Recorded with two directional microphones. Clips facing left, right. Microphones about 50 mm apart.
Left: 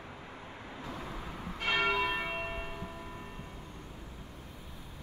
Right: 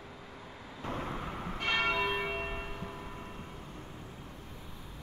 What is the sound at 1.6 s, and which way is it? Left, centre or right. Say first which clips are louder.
Church bell: left 1 dB; centre.